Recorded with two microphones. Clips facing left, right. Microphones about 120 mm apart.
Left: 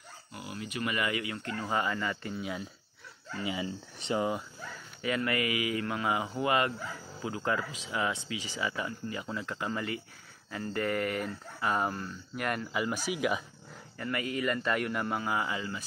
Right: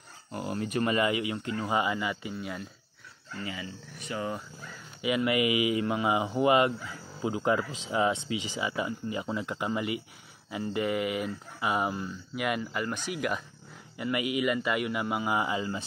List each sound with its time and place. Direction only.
0.3 s speech: 40° right (ahead or behind)
0.9 s speech: 25° right (ahead or behind)
2.3 s speech: centre (ahead or behind)
3.4 s speech: 25° left (ahead or behind)
5.0 s speech: 15° right (ahead or behind); by 13.4 s 5° left (ahead or behind)
13.9 s speech: 15° right (ahead or behind)